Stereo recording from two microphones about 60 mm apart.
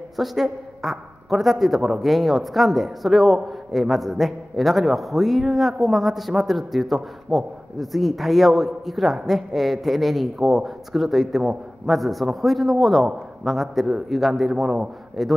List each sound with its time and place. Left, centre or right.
0.2 s a man's voice: centre